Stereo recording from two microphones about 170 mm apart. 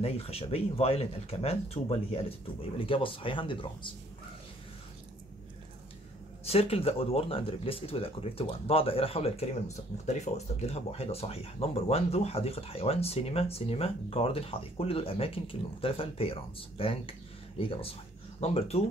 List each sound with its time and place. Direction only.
0.0 s speech: 35° left (ahead or behind)
6.4 s speech: 35° left (ahead or behind)